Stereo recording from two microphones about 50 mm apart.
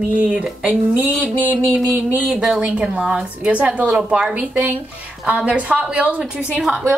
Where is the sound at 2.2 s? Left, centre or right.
Centre.